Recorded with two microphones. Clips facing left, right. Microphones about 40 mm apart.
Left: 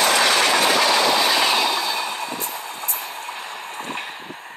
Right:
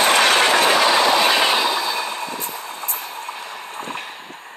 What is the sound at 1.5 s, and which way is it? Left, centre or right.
Train, centre.